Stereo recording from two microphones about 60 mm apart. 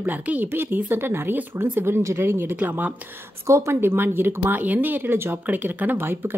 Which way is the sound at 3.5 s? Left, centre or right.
Right.